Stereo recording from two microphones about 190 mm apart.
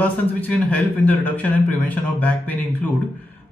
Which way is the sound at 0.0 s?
10° left (ahead or behind).